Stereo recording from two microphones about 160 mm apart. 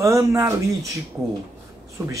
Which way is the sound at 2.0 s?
20° right (ahead or behind).